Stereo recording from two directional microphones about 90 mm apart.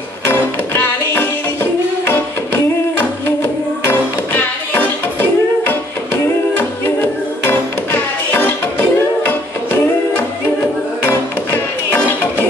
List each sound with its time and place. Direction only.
0.3 s music: 20° left (ahead or behind)
4.8 s music: 20° left (ahead or behind)
11.1 s music: 20° left (ahead or behind)